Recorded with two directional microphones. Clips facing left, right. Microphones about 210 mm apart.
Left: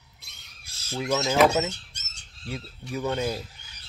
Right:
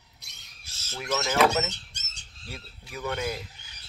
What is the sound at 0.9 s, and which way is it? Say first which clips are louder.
Speech: left 4 dB; 30° left (ahead or behind).